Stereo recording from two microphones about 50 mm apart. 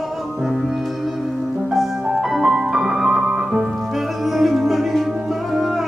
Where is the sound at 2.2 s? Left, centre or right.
Centre.